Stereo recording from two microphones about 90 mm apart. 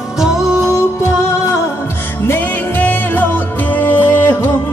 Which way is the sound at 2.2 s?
25° left (ahead or behind).